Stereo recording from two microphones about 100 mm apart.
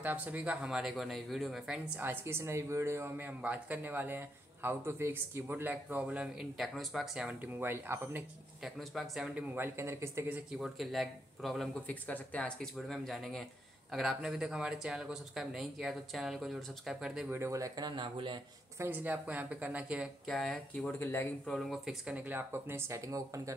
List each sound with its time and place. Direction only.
0.0 s speech: 15° right (ahead or behind)
2.0 s speech: 20° right (ahead or behind)
6.6 s speech: centre (ahead or behind)
7.4 s speech: 20° right (ahead or behind)
8.6 s speech: centre (ahead or behind)
9.3 s speech: 25° right (ahead or behind)
10.6 s speech: centre (ahead or behind)
11.9 s speech: 15° left (ahead or behind); by 17.3 s 5° right (ahead or behind)
17.3 s speech: 30° right (ahead or behind); by 18.4 s 55° right (ahead or behind)
18.8 s speech: 15° right (ahead or behind)
20.2 s speech: 5° left (ahead or behind)
21.0 s speech: 25° left (ahead or behind)
21.5 s speech: centre (ahead or behind); by 23.5 s 35° right (ahead or behind)